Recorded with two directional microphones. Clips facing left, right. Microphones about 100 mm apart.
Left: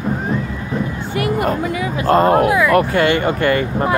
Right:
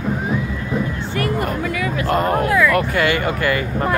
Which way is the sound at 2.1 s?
35° left (ahead or behind).